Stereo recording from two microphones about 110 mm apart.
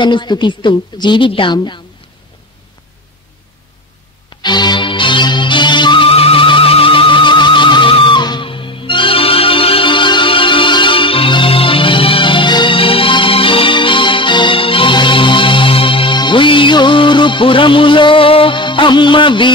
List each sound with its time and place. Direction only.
0.0 s a woman's voice: 45° left (ahead or behind)
4.4 s music: 40° left (ahead or behind)